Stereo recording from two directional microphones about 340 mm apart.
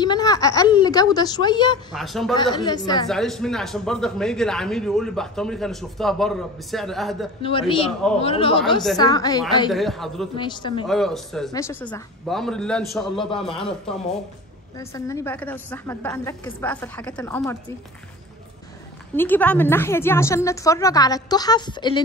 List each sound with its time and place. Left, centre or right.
0.0 s a woman's voice: centre
1.9 s a man's voice: centre
2.3 s a woman's voice: centre
3.1 s a man's voice: centre
7.4 s a woman's voice: centre
9.7 s a man's voice: centre
10.3 s a woman's voice: centre
10.9 s a man's voice: centre
19.1 s a woman's voice: centre